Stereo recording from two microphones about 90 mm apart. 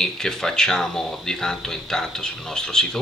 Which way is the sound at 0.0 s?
5° left (ahead or behind).